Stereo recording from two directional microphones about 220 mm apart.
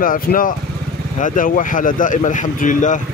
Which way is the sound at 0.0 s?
40° left (ahead or behind).